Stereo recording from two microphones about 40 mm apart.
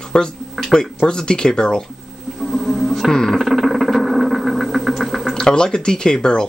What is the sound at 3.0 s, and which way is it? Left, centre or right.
Speech, centre.